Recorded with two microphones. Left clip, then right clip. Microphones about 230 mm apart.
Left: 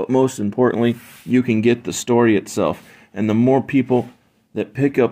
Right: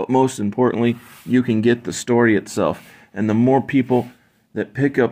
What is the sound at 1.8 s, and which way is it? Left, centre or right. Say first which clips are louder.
Speech: left 1 dB; centre.